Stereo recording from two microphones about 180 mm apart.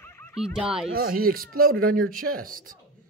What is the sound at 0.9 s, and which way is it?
Speech, 55° right (ahead or behind).